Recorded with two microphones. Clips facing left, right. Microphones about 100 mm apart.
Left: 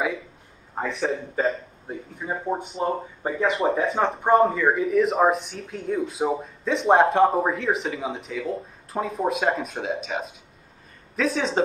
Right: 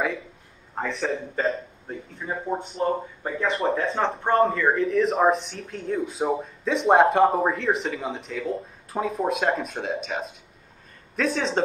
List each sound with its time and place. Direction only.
0.7 s speech: 5° left (ahead or behind)
3.3 s speech: 20° left (ahead or behind)
3.5 s speech: centre (ahead or behind)